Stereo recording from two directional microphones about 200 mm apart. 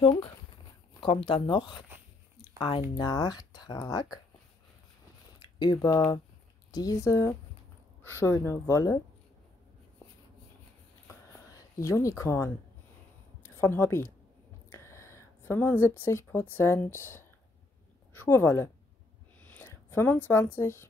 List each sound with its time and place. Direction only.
0.0 s speech: 25° left (ahead or behind)
5.6 s speech: 20° left (ahead or behind)
11.5 s speech: 15° left (ahead or behind)